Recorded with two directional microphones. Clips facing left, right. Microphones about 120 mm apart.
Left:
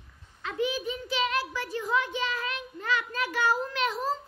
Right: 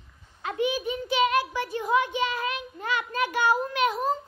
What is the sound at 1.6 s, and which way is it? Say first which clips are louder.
Speech: right 4 dB; 15° right (ahead or behind).